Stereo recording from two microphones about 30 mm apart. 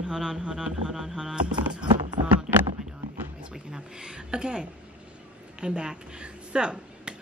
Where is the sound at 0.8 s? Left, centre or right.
Centre.